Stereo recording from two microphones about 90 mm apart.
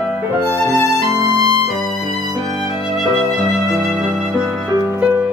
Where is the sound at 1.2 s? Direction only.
45° right (ahead or behind).